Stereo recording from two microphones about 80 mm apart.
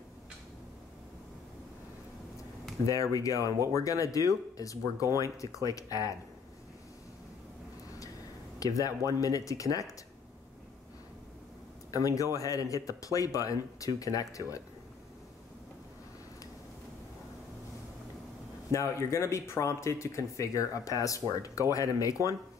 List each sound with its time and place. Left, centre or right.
2.8 s speech: left
8.5 s speech: left
11.9 s speech: left
18.7 s speech: left